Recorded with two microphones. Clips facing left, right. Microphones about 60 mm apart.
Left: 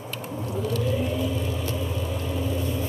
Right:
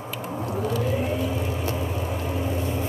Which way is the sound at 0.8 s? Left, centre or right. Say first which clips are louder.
Right 1 dB; right.